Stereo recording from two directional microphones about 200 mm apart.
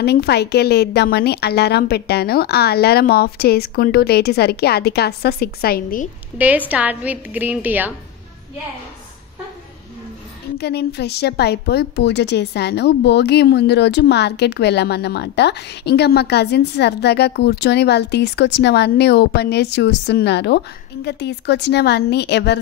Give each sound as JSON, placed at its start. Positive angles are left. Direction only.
{"t": 0.0, "sound": "a woman's voice", "side_deg": 55}
{"t": 6.3, "sound": "a woman's voice", "side_deg": -10}
{"t": 10.6, "sound": "a woman's voice", "side_deg": 55}